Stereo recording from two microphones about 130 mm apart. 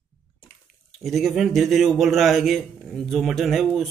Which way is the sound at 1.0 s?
Centre (ahead or behind).